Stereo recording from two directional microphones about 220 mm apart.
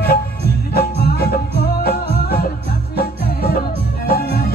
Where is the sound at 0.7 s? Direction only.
45° left (ahead or behind).